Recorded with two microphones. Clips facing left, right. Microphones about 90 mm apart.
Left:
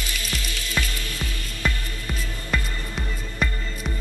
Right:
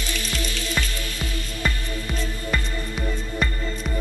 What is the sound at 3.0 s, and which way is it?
Music, 25° right (ahead or behind).